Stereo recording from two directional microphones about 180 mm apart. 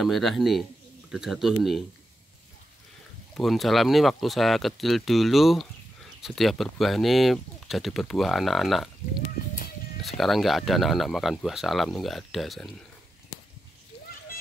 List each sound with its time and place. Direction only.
0.0 s speech: centre (ahead or behind)
3.3 s speech: centre (ahead or behind)
10.0 s speech: centre (ahead or behind)